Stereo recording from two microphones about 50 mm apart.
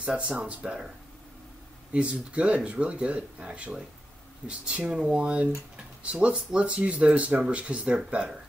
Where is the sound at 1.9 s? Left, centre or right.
Right.